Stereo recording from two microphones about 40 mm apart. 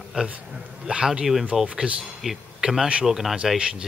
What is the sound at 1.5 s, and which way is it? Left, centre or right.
Speech, centre.